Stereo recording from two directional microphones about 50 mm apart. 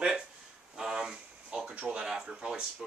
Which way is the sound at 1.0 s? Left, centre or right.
Centre.